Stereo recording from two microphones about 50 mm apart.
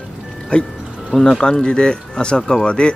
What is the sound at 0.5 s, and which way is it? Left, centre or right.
Speech, left.